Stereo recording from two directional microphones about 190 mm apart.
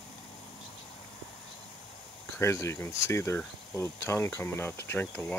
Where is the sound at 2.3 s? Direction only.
15° left (ahead or behind).